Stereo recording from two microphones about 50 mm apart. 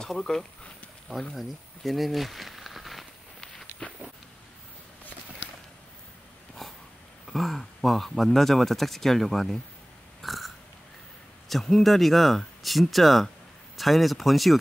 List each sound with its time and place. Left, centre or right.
0.2 s speech: centre
1.3 s speech: centre
3.8 s a sound: centre
6.6 s a sound: centre
7.2 s speech: centre
10.2 s burping: centre
11.4 s speech: centre